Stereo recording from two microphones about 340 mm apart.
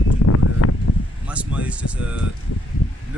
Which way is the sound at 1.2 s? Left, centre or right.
Centre.